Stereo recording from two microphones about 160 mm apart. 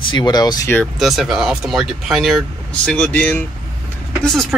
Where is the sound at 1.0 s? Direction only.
5° right (ahead or behind).